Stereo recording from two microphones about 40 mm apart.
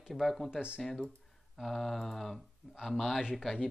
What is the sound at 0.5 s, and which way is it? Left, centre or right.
Speech, right.